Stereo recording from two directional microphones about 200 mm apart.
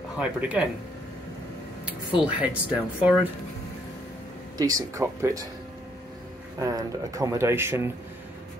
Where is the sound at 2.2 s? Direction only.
5° right (ahead or behind).